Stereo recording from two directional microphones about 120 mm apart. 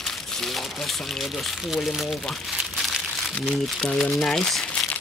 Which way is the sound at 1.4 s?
Centre (ahead or behind).